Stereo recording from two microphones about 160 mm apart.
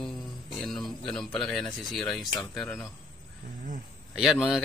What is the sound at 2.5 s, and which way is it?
Speech, 5° left (ahead or behind).